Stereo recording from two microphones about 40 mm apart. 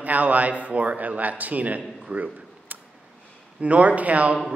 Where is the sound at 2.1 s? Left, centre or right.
Right.